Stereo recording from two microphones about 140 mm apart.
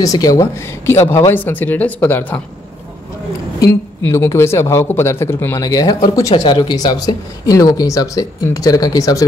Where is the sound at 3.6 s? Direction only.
20° left (ahead or behind).